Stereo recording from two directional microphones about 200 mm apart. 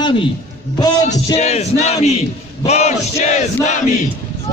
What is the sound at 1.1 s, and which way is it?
Music, 30° left (ahead or behind).